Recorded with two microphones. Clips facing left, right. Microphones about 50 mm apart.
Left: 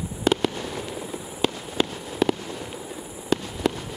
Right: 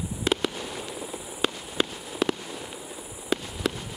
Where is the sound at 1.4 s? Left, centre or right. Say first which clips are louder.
Left 3 dB; centre.